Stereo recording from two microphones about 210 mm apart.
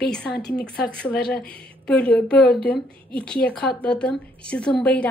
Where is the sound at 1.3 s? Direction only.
5° left (ahead or behind).